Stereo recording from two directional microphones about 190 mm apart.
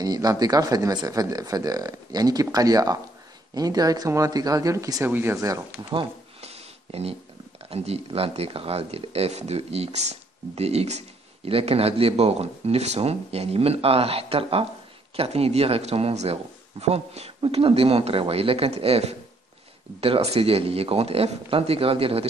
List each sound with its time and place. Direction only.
0.0 s speech: 20° right (ahead or behind)
5.9 s a sound: 30° right (ahead or behind)
7.7 s speech: 30° right (ahead or behind)